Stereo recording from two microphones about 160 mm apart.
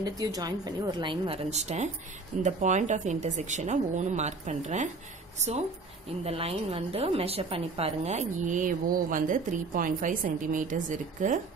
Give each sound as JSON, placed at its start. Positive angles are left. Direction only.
{"t": 0.0, "sound": "a woman's voice", "side_deg": -25}
{"t": 6.2, "sound": "a woman's voice", "side_deg": -40}